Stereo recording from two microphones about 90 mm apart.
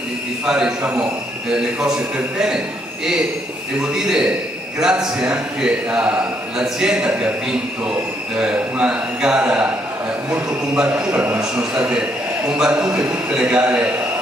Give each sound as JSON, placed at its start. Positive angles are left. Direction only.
{"t": 0.5, "sound": "a man's voice", "side_deg": -10}
{"t": 3.8, "sound": "a man's voice", "side_deg": -5}
{"t": 8.4, "sound": "a man's voice", "side_deg": -10}
{"t": 10.9, "sound": "a man's voice", "side_deg": -25}
{"t": 11.5, "sound": "a man's voice", "side_deg": -10}